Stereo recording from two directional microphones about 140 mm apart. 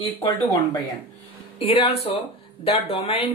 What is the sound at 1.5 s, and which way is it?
Speech, 45° left (ahead or behind).